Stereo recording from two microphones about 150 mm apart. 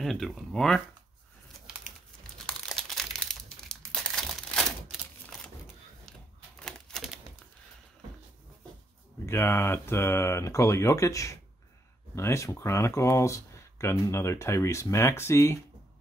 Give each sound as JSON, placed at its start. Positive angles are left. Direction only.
{"t": 0.0, "sound": "speech", "side_deg": 0}
{"t": 2.3, "sound": "crumpling", "side_deg": 5}
{"t": 4.9, "sound": "typewriter", "side_deg": 0}
{"t": 6.6, "sound": "a sound", "side_deg": 0}
{"t": 9.2, "sound": "speech", "side_deg": 15}